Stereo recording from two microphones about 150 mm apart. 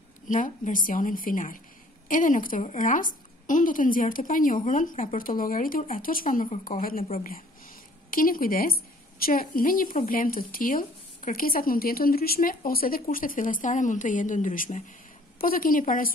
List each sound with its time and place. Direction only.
0.3 s a woman's voice: 60° left (ahead or behind)
6.8 s speech: 70° left (ahead or behind)
8.1 s a woman's voice: 70° left (ahead or behind)